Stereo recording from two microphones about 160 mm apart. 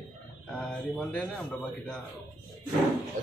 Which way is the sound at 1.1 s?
5° left (ahead or behind).